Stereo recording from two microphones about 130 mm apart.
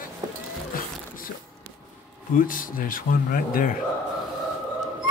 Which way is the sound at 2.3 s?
90° left.